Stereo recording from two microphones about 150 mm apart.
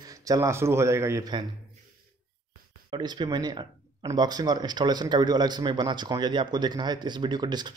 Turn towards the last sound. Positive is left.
turn(degrees=-30)  # may be behind; listen again after turning